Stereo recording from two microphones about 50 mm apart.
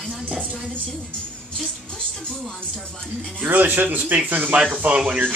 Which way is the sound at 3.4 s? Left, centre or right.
Right.